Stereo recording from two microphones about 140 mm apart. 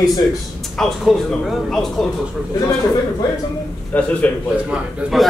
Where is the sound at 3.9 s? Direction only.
10° left (ahead or behind).